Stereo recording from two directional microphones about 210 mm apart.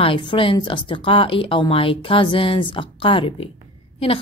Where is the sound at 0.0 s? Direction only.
25° left (ahead or behind).